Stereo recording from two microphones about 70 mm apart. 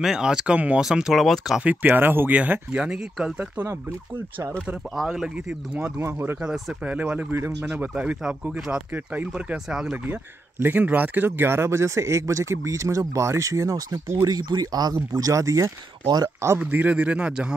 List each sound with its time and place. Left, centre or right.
0.0 s speech: centre
0.8 s speech: centre
1.6 s speech: right
4.9 s speech: centre
5.9 s speech: right
6.9 s speech: right
8.9 s speech: right
9.7 s speech: centre
10.6 s a man's voice: right
16.5 s speech: right